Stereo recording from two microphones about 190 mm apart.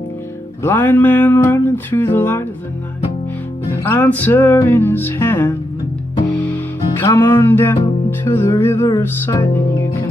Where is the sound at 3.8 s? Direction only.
10° left (ahead or behind).